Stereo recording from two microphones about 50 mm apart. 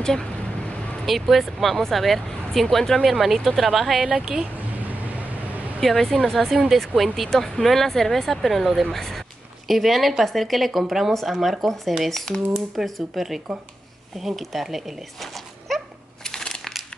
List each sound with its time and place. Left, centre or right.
0.0 s speech: centre
1.0 s speech: centre
4.1 s speech: centre
4.7 s vehicle: right
5.8 s speech: centre
16.3 s a sound: centre